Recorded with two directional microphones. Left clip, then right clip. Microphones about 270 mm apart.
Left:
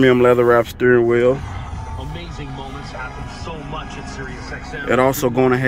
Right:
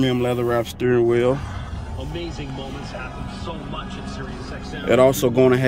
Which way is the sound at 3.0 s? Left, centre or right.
Right.